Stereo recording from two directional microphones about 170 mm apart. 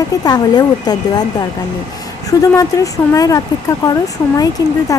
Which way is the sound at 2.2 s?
20° left (ahead or behind).